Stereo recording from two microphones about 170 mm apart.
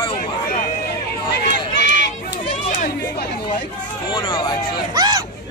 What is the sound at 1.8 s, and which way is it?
Run, 90° left.